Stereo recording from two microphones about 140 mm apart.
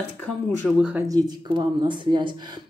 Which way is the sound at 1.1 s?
30° right (ahead or behind).